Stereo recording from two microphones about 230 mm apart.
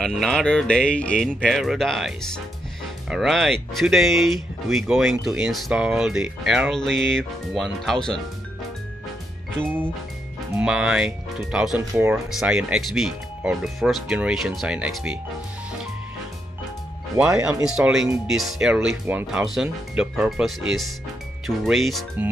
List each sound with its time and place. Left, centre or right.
0.0 s speech: centre
10.6 s speech: centre
17.2 s speech: centre
21.6 s speech: centre